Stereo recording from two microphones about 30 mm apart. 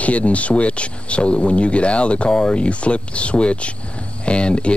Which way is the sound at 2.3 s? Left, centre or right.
Left.